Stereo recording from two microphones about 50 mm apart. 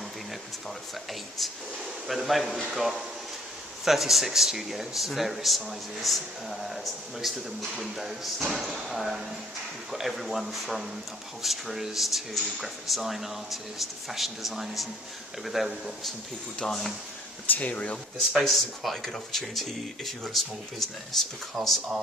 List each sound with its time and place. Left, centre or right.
2.0 s speech: centre
16.5 s speech: centre
17.5 s speech: left
18.4 s speech: centre